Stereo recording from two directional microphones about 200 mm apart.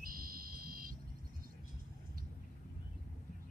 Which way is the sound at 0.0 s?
45° right (ahead or behind).